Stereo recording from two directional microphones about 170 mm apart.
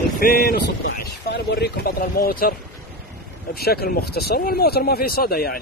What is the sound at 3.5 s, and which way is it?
Speech, 65° left (ahead or behind).